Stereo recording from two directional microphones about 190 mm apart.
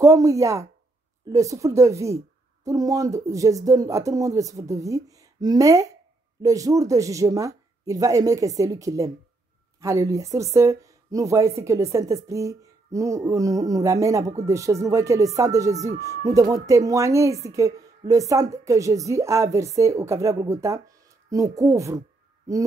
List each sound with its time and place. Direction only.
0.0 s speech: 15° right (ahead or behind)